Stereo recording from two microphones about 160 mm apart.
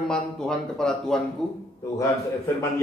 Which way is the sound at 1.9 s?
20° left (ahead or behind).